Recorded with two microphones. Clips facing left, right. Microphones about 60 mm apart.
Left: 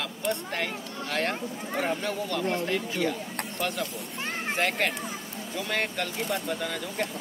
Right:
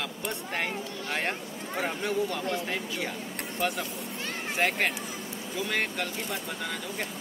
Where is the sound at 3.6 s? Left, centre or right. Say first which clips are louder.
Right 1 dB; centre.